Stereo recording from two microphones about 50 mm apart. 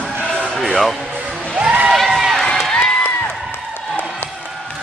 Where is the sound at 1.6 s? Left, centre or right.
Centre.